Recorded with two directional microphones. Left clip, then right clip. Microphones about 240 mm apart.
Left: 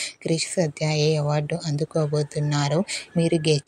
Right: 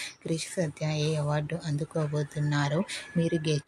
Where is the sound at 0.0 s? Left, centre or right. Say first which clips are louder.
Left 8 dB; left.